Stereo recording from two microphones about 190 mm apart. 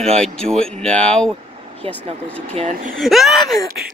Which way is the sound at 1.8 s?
30° right (ahead or behind).